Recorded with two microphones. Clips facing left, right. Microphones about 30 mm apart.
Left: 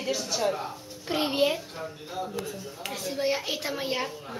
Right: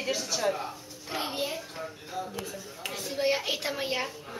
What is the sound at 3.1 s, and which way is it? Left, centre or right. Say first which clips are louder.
Speech: right 1 dB; centre.